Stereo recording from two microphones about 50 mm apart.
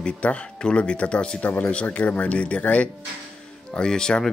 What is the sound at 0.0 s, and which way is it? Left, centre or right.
Speech, left.